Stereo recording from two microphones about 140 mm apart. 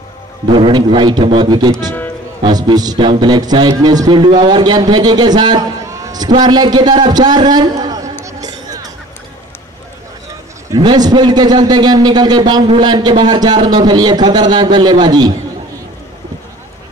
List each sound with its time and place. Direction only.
0.5 s a man's voice: 35° right (ahead or behind)
8.3 s music: 25° right (ahead or behind)
10.7 s a man's voice: 30° right (ahead or behind)